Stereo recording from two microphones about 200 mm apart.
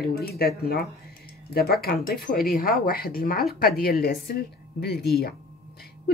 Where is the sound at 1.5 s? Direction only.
50° left (ahead or behind).